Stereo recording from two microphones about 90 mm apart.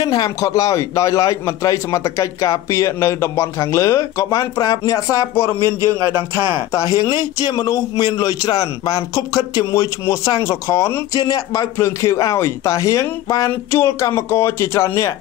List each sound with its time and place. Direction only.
0.0 s a man's voice: 45° left (ahead or behind)
5.3 s speech: 25° left (ahead or behind)
5.6 s speech: 40° right (ahead or behind)
6.0 s a man's voice: 35° left (ahead or behind)
11.1 s a man's voice: 45° left (ahead or behind)